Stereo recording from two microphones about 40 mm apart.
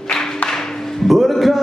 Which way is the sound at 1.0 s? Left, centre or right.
Centre.